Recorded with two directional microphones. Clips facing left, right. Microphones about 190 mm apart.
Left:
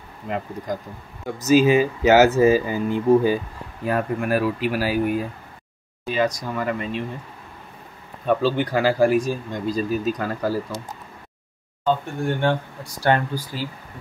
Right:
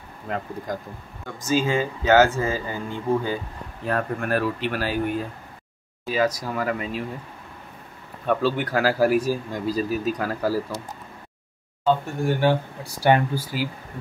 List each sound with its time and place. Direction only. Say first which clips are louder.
1.4 s speech: left 7 dB; 20° left (ahead or behind)
6.0 s speech: even; 5° right (ahead or behind)
8.7 s speech: left 1 dB; 5° right (ahead or behind)
11.8 s speech: right 1 dB; 5° right (ahead or behind)